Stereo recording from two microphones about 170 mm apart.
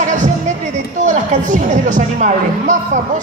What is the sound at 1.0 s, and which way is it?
Speech, 45° right (ahead or behind).